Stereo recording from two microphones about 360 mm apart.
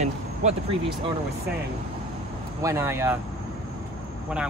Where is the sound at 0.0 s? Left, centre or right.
Centre.